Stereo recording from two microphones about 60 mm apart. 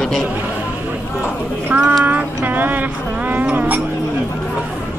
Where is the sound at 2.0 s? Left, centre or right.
Right.